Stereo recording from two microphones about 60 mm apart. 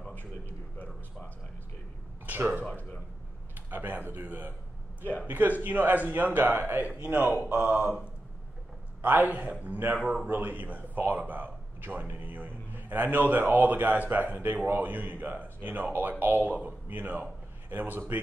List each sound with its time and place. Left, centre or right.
2.2 s speech: right
2.6 s speech: left
3.7 s speech: right
5.0 s speech: left
5.6 s speech: right
9.0 s speech: right